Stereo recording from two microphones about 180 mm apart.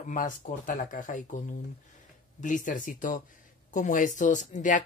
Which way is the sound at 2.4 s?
45° left (ahead or behind).